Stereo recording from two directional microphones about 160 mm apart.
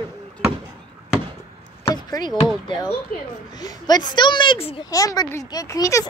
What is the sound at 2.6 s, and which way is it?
A child's voice, 30° left (ahead or behind).